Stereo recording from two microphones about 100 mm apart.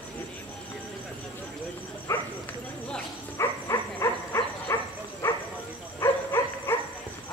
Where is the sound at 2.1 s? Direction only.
25° left (ahead or behind).